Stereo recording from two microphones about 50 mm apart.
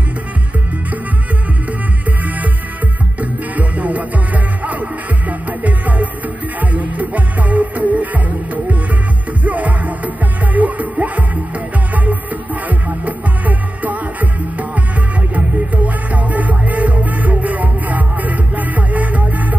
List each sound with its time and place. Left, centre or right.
3.2 s music: right
9.4 s music: right